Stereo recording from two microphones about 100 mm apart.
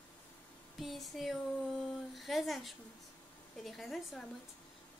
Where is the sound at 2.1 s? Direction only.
Centre (ahead or behind).